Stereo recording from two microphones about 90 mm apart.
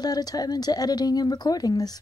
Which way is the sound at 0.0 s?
45° left (ahead or behind).